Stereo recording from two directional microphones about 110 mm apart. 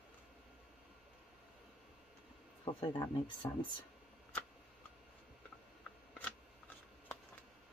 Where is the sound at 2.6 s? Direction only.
50° left (ahead or behind).